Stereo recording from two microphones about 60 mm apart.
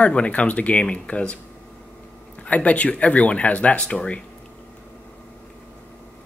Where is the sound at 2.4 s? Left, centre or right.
Left.